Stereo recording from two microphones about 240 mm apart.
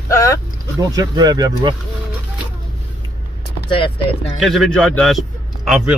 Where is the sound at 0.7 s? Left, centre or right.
Centre.